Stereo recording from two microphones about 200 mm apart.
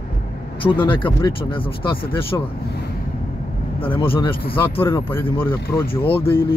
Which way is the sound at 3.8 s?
25° left (ahead or behind).